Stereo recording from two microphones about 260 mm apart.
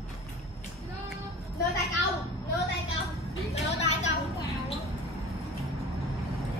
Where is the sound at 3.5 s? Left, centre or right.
Left.